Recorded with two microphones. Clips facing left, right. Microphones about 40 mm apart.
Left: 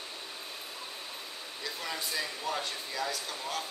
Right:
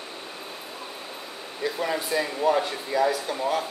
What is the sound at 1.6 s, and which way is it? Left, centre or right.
Air conditioning, right.